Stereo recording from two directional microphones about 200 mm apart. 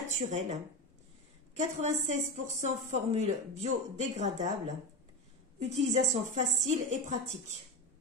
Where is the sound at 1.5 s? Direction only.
35° right (ahead or behind).